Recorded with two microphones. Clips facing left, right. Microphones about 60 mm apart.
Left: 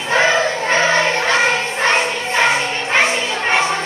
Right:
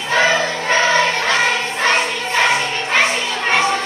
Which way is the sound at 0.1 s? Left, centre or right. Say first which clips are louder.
Left 1 dB; left.